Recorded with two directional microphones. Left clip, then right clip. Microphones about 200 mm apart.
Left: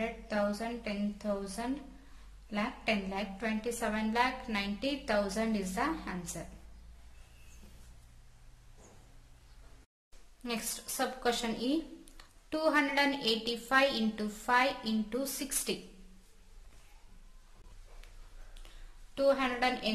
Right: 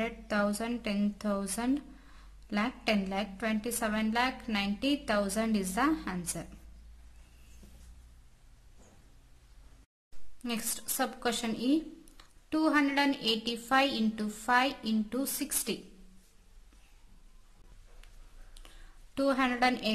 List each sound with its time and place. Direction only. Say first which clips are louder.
0.3 s a woman's voice: right 2 dB; 35° right (ahead or behind)
10.4 s a woman's voice: right 1 dB; 25° right (ahead or behind)
18.5 s a sound: right 3 dB; 30° right (ahead or behind)